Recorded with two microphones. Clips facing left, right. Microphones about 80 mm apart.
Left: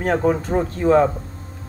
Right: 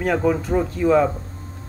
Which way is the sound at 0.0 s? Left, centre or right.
Left.